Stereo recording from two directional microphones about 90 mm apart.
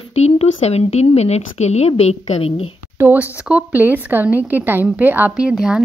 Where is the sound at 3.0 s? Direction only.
20° right (ahead or behind).